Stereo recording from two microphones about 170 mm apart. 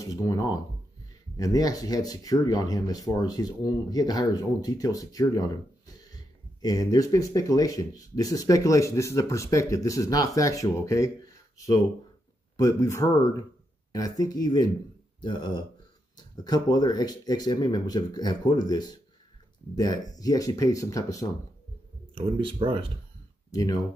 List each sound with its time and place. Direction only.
0.0 s speech: 20° left (ahead or behind)
22.1 s speech: 30° right (ahead or behind)
23.5 s speech: 20° left (ahead or behind)